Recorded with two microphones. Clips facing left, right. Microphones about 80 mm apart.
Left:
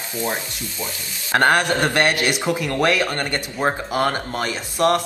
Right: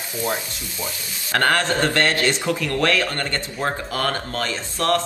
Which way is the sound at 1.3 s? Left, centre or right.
Centre.